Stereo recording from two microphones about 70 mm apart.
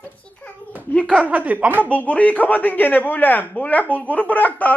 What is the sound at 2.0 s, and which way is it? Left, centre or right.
A man's voice, left.